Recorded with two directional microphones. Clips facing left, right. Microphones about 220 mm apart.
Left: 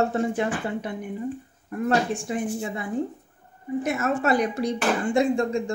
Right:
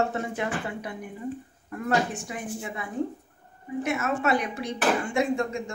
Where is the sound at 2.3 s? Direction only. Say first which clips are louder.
Left 7 dB; 30° left (ahead or behind).